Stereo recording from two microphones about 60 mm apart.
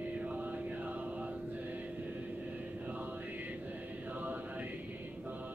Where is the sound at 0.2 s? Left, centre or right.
Right.